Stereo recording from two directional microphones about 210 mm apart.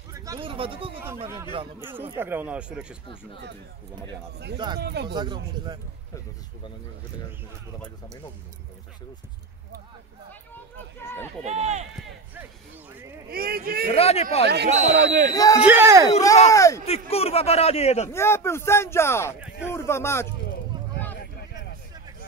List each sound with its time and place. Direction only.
0.1 s speech: 15° right (ahead or behind)
1.0 s speech: 10° right (ahead or behind)
4.7 s speech: 50° right (ahead or behind)
5.1 s speech: 20° right (ahead or behind)
10.5 s a sound: 10° left (ahead or behind)
11.4 s speech: 30° right (ahead or behind)
13.3 s speech: 45° right (ahead or behind)
13.9 s a man's voice: 30° left (ahead or behind)
14.4 s speech: 55° right (ahead or behind)
15.3 s speech: 15° left (ahead or behind)
15.6 s speech: 10° right (ahead or behind)
16.4 s speech: 15° left (ahead or behind)
17.1 s a man's voice: 30° left (ahead or behind)
18.1 s speech: 10° left (ahead or behind)